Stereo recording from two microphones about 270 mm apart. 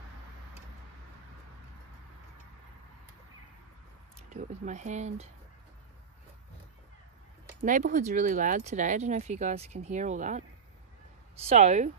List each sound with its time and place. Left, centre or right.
4.3 s speech: right
7.6 s speech: right
11.4 s speech: right